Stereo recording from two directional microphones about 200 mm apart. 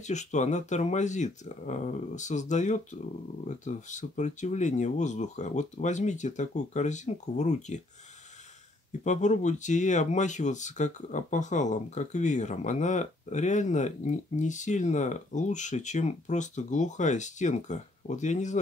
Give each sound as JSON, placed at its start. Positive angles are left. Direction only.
{"t": 0.0, "sound": "speech", "side_deg": 35}
{"t": 9.0, "sound": "speech", "side_deg": 35}